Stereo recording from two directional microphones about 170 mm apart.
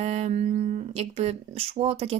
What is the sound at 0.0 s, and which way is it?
Speech, 40° right (ahead or behind).